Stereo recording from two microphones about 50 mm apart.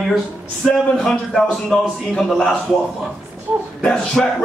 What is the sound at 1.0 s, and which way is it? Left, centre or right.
A man's voice, centre.